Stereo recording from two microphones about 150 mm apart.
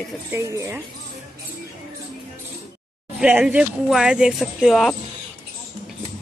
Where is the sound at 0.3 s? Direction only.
20° right (ahead or behind).